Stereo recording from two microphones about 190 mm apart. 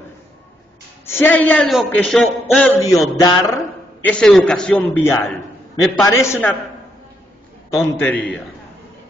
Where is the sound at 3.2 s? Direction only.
20° left (ahead or behind).